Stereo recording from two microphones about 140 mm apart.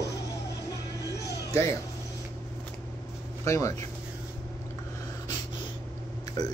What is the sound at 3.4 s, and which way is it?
Speech, 25° left (ahead or behind).